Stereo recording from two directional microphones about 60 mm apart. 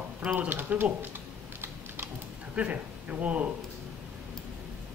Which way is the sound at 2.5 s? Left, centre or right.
Right.